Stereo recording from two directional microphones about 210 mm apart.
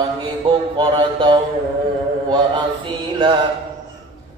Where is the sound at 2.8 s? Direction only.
25° right (ahead or behind).